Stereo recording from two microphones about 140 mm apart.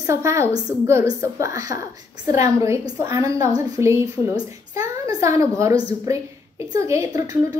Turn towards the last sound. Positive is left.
turn(degrees=-20)  # may be behind; listen again after turning